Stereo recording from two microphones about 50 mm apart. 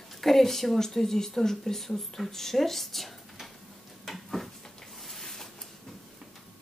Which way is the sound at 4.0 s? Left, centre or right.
Centre.